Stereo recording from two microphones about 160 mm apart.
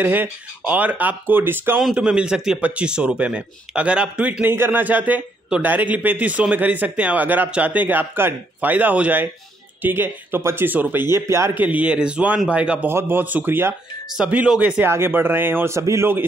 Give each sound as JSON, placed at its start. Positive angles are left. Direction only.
{"t": 0.0, "sound": "a man's voice", "side_deg": -10}